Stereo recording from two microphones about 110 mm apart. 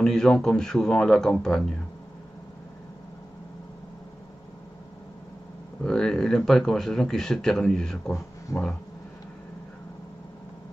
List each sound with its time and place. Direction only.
0.0 s speech: 5° left (ahead or behind)
5.9 s speech: 5° left (ahead or behind)
8.5 s speech: 30° left (ahead or behind)